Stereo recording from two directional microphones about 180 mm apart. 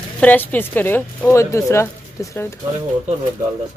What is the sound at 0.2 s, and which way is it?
Speech, 10° left (ahead or behind).